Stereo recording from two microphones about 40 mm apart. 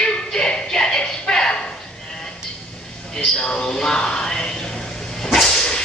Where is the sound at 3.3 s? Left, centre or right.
Left.